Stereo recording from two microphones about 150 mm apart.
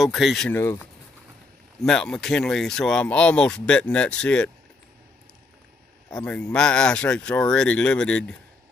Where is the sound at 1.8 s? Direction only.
5° left (ahead or behind).